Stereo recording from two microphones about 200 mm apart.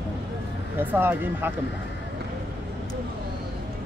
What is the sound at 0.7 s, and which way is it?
Speech, 10° right (ahead or behind).